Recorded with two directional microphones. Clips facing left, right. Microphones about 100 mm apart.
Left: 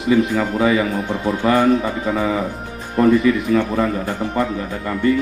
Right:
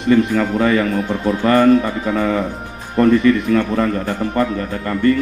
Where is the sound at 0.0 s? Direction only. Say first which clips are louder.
Right 2 dB; 5° left (ahead or behind).